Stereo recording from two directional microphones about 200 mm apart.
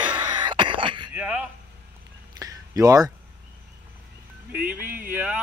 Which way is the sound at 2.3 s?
20° right (ahead or behind).